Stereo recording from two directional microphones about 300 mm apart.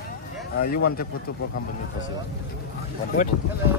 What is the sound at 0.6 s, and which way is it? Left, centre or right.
Speech, left.